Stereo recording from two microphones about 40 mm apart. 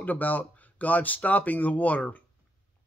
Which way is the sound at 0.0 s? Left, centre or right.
Left.